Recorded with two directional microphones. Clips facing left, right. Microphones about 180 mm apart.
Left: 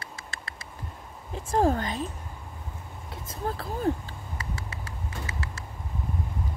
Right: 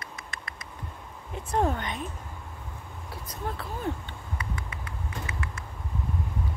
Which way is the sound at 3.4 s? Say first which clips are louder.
Left 5 dB; 35° left (ahead or behind).